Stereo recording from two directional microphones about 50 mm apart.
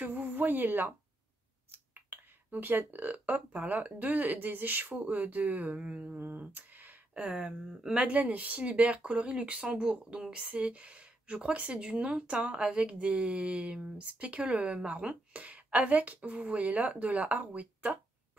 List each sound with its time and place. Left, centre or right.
0.0 s a sound: right
1.7 s speech: right
6.0 s a sound: right
7.8 s speech: centre
8.1 s speech: right; by 10.5 s centre
10.5 s speech: right